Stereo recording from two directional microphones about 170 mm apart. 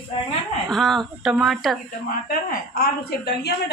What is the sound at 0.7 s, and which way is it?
Speech, centre (ahead or behind).